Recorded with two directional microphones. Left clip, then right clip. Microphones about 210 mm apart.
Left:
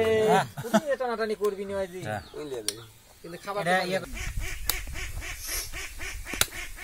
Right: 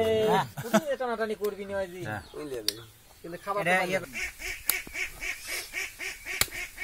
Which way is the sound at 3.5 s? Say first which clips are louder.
Even; centre (ahead or behind).